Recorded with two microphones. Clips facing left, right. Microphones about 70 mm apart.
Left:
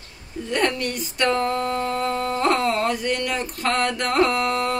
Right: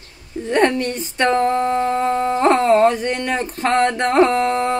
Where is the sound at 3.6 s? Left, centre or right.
Right.